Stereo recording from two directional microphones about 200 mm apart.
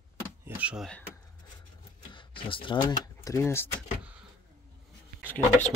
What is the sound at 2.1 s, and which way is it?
Speech, 25° left (ahead or behind).